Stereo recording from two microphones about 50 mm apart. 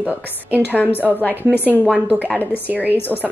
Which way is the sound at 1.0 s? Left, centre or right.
Right.